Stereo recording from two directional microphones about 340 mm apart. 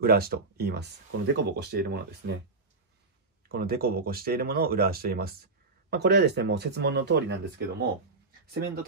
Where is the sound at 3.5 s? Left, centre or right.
Right.